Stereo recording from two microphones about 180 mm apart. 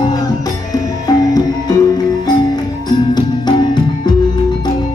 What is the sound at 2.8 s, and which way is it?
Music, 25° left (ahead or behind).